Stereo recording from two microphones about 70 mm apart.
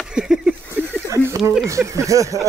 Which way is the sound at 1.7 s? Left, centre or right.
Right.